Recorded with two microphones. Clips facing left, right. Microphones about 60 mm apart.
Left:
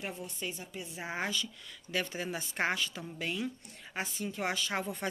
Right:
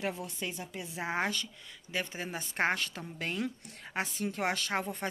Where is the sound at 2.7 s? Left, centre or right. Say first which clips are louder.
Right 1 dB; right.